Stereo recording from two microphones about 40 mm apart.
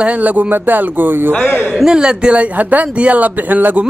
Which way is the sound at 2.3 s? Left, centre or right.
Right.